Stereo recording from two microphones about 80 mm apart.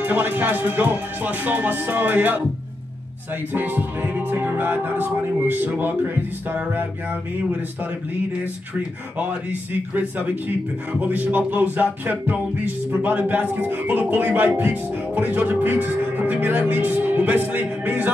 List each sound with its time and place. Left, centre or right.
0.0 s music: right
3.5 s music: right
9.9 s music: centre